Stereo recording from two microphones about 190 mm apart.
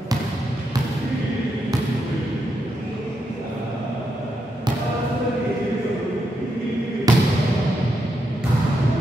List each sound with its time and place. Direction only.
7.1 s basketball bounce: 20° right (ahead or behind)